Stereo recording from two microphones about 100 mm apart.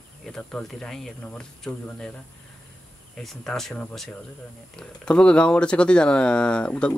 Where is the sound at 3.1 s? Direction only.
5° left (ahead or behind).